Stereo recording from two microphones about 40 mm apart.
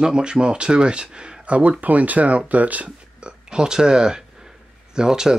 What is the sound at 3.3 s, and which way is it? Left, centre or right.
Speech, centre.